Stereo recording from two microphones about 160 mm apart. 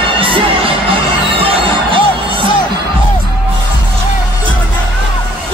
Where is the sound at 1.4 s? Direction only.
35° right (ahead or behind).